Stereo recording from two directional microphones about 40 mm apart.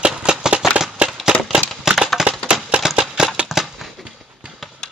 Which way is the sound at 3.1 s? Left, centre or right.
Right.